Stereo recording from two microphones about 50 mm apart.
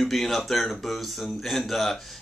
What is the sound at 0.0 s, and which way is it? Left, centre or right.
Speech, centre.